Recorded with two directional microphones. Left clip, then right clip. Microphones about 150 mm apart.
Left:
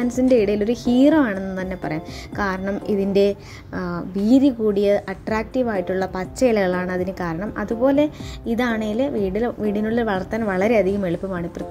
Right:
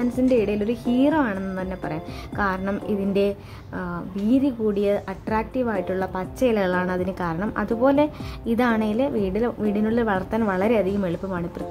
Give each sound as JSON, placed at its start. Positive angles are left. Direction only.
{"t": 0.0, "sound": "a woman's voice", "side_deg": 10}
{"t": 1.3, "sound": "a woman's voice", "side_deg": 5}